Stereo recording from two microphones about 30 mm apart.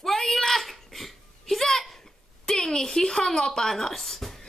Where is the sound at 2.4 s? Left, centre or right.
Centre.